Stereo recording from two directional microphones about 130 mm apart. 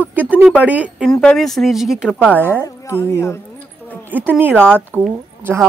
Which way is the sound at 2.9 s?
20° left (ahead or behind).